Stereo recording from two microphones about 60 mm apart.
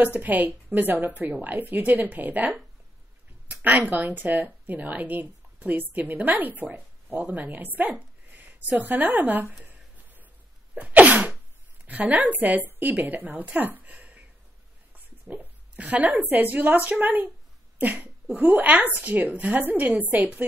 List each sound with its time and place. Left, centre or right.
0.0 s a woman's voice: right
10.8 s sneeze: right
11.8 s a woman's voice: right
15.2 s a woman's voice: right